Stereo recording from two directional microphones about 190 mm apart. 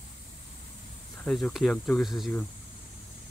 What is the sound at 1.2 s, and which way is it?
Speech, 5° left (ahead or behind).